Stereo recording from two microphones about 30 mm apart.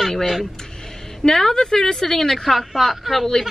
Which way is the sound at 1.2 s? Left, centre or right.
Centre.